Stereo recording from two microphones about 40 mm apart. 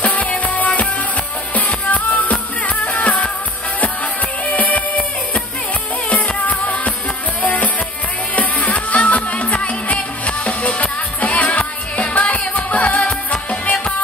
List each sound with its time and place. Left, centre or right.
0.0 s music: left